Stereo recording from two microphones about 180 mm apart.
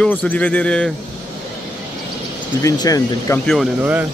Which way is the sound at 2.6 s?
20° left (ahead or behind).